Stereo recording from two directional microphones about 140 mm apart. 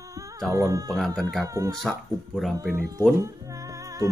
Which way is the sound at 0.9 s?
5° left (ahead or behind).